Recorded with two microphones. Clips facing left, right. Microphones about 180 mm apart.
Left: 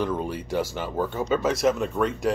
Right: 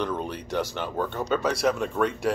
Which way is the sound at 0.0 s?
5° left (ahead or behind).